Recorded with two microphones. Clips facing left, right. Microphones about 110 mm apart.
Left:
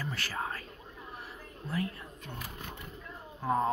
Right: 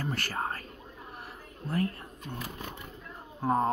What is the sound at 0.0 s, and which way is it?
Whispering, 50° right (ahead or behind).